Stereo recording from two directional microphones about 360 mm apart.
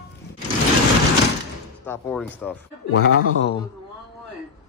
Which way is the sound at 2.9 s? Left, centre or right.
Left.